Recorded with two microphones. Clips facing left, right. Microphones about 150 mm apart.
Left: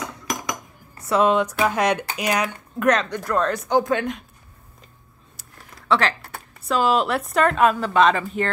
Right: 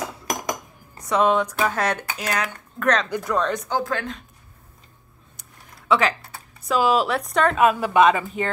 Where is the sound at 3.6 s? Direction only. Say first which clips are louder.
Left 5 dB; 20° left (ahead or behind).